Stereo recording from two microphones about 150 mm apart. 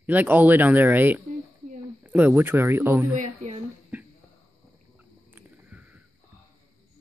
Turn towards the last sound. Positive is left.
turn(degrees=-10)  # may be behind; listen again after turning